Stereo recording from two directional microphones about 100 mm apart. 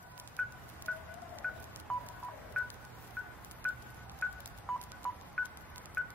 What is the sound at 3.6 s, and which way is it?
Telephone dialing, 15° left (ahead or behind).